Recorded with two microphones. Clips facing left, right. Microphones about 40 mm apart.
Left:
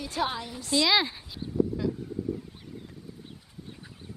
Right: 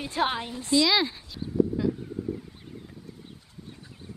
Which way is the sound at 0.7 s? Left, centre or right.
Centre.